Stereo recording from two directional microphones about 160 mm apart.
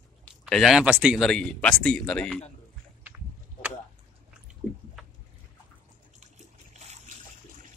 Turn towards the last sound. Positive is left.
turn(degrees=-45)  # may be behind; listen again after turning